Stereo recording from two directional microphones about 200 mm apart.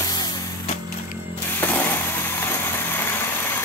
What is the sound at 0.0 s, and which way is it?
Music, 20° left (ahead or behind).